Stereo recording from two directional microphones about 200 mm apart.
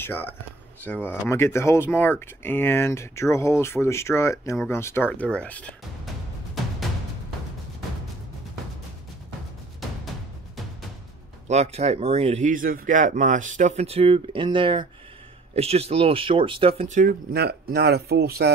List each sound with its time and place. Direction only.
0.0 s speech: 10° left (ahead or behind)
11.4 s speech: 35° right (ahead or behind)
17.0 s speech: 55° right (ahead or behind)